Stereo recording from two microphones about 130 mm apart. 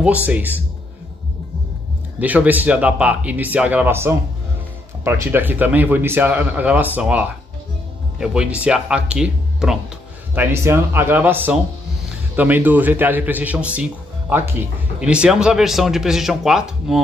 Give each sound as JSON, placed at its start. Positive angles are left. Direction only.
{"t": 0.0, "sound": "speech", "side_deg": -10}
{"t": 2.1, "sound": "speech", "side_deg": -10}
{"t": 10.3, "sound": "speech", "side_deg": -15}
{"t": 15.0, "sound": "speech", "side_deg": -5}